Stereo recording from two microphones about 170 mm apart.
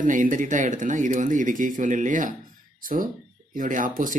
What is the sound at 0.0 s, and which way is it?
Speech, 50° right (ahead or behind).